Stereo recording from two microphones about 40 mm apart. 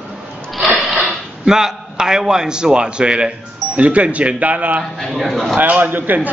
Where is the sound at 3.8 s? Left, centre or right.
Right.